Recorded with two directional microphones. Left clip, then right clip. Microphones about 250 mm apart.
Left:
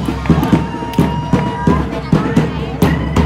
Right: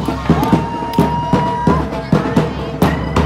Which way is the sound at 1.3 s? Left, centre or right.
Right.